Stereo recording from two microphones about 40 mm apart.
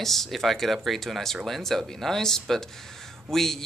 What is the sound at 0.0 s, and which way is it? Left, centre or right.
Speech, centre.